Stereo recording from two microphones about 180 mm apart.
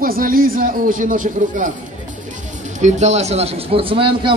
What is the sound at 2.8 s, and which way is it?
Speech, 40° right (ahead or behind).